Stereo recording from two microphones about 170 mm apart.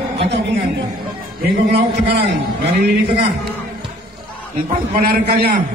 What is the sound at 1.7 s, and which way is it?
Speech, 75° right (ahead or behind).